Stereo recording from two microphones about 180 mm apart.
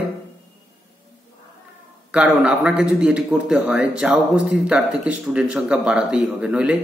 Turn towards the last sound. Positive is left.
turn(degrees=-5)  # may be behind; listen again after turning